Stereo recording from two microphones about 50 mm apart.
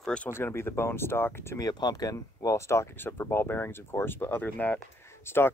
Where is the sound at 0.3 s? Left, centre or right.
Left.